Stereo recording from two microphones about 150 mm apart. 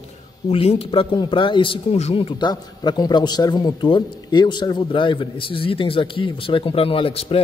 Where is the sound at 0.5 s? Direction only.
40° left (ahead or behind).